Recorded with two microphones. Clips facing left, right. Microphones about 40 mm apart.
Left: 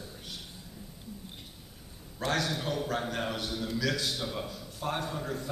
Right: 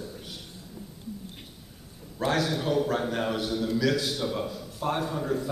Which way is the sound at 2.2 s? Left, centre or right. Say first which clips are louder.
Right 4 dB; centre.